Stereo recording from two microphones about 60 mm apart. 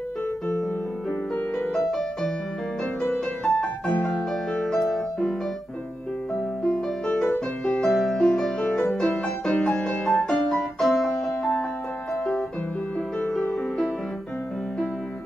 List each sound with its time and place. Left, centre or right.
1.9 s music: centre
4.1 s piano: centre
7.2 s music: centre
10.0 s music: centre
13.3 s music: centre